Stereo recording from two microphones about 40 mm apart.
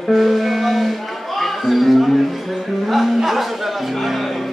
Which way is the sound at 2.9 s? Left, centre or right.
Centre.